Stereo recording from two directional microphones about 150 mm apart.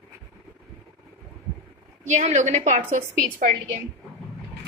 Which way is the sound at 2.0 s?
50° right (ahead or behind).